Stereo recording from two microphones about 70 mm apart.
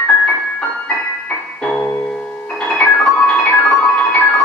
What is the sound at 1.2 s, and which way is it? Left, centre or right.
Music, centre.